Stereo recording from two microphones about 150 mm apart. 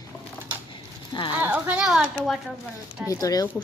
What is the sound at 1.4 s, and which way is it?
Speech, 10° right (ahead or behind).